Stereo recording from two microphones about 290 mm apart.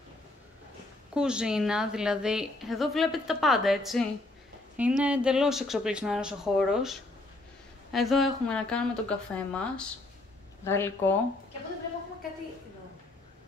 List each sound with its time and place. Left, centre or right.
1.1 s a woman's voice: centre